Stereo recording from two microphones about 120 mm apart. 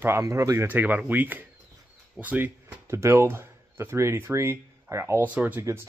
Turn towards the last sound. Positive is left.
turn(degrees=-20)  # may be behind; listen again after turning